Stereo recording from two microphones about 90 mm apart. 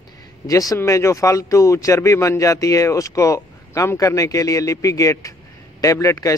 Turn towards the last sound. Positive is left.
turn(degrees=40)  # may be behind; listen again after turning